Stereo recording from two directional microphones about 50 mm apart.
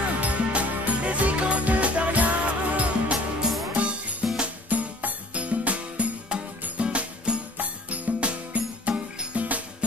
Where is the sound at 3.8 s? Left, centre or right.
Right.